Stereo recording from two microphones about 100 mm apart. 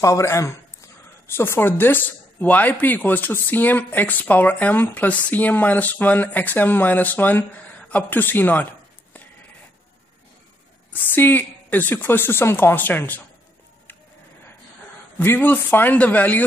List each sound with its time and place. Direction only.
0.0 s speech: 30° left (ahead or behind)
10.9 s speech: 20° left (ahead or behind)
15.1 s speech: 20° left (ahead or behind)